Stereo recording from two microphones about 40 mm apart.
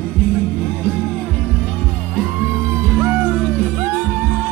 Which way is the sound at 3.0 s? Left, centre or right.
Right.